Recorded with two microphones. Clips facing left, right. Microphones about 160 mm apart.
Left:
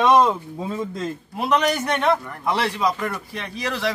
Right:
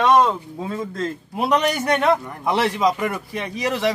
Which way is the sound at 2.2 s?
20° right (ahead or behind).